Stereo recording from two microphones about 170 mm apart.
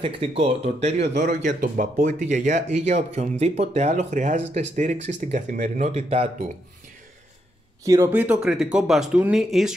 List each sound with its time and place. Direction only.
0.0 s speech: 35° right (ahead or behind)
1.1 s speech: 55° right (ahead or behind); by 6.3 s 40° right (ahead or behind)
7.8 s speech: 15° right (ahead or behind)